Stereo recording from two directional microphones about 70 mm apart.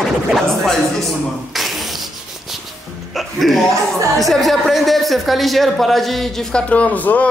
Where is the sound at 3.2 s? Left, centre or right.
Centre.